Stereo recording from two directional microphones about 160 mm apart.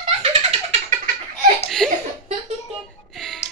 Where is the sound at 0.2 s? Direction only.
40° right (ahead or behind).